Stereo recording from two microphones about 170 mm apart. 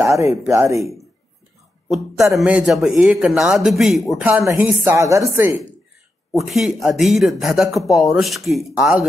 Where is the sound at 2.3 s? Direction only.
5° right (ahead or behind).